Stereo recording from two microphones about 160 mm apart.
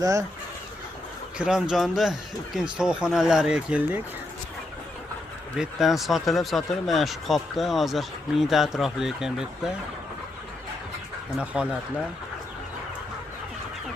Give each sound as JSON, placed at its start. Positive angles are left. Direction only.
{"t": 1.4, "sound": "speech", "side_deg": -5}
{"t": 5.6, "sound": "speech", "side_deg": 0}
{"t": 11.3, "sound": "speech", "side_deg": -5}